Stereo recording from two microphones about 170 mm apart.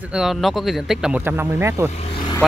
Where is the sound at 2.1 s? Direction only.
30° left (ahead or behind).